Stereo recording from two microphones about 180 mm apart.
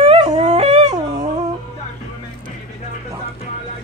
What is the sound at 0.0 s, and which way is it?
Dog, 30° right (ahead or behind).